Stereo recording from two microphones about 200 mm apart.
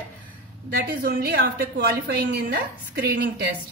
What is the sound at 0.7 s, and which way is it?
Speech, 50° right (ahead or behind).